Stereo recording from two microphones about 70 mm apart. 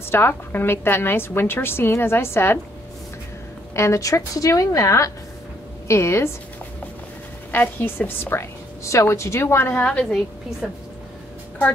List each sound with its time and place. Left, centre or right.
0.0 s a woman's voice: left
3.7 s a woman's voice: left
7.5 s a woman's voice: left
8.8 s a woman's voice: left